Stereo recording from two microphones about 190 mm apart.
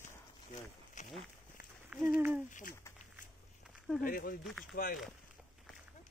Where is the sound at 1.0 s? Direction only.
40° left (ahead or behind).